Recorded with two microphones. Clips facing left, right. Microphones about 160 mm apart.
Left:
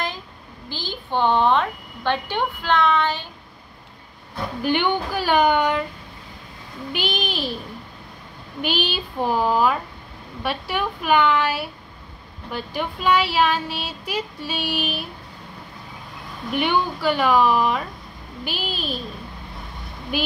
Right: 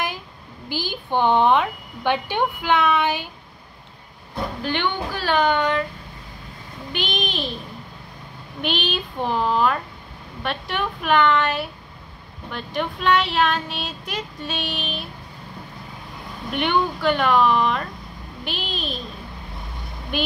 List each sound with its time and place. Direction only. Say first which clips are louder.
0.7 s a woman's voice: right 3 dB; 10° right (ahead or behind)
4.6 s speech: left 5 dB; 15° left (ahead or behind)
6.9 s speech: left 1 dB; 5° left (ahead or behind)
8.5 s speech: left 1 dB; 5° left (ahead or behind)
16.5 s speech: even; 5° left (ahead or behind)